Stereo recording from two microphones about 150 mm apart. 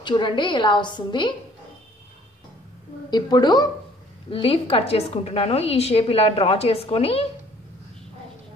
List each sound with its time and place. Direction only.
0.0 s a woman's voice: 30° left (ahead or behind)
3.1 s a woman's voice: 30° left (ahead or behind)
4.3 s a woman's voice: 40° left (ahead or behind)